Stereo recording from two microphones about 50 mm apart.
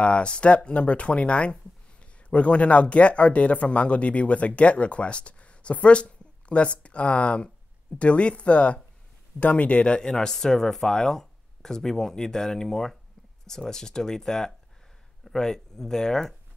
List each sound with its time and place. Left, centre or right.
0.0 s speech: left